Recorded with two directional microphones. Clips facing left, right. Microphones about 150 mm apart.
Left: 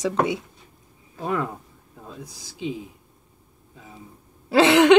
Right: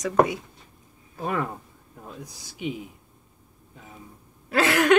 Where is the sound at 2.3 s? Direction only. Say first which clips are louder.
Left 2 dB; 15° right (ahead or behind).